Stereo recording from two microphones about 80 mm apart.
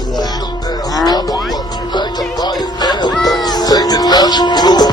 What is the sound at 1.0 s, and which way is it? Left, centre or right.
Music, left.